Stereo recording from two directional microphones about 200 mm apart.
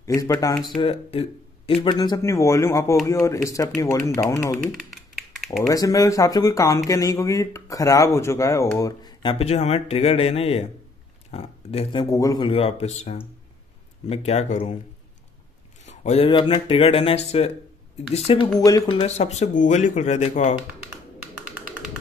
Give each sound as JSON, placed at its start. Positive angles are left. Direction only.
{"t": 0.0, "sound": "speech", "side_deg": 15}
{"t": 0.7, "sound": "speech", "side_deg": 30}
{"t": 4.6, "sound": "speech", "side_deg": 0}
{"t": 5.3, "sound": "typing", "side_deg": 0}
{"t": 5.7, "sound": "speech", "side_deg": 15}
{"t": 15.8, "sound": "speech", "side_deg": 35}